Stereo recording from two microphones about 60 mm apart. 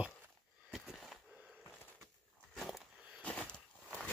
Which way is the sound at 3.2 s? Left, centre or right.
Left.